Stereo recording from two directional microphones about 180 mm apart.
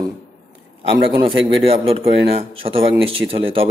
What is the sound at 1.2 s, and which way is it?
Speech, 30° right (ahead or behind).